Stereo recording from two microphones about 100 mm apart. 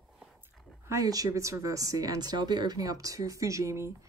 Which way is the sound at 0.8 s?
35° right (ahead or behind).